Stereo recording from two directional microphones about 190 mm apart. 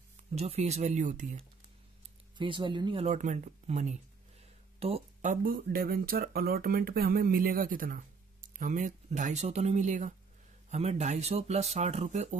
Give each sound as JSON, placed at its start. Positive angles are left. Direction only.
{"t": 0.3, "sound": "speech", "side_deg": -35}
{"t": 2.3, "sound": "speech", "side_deg": -25}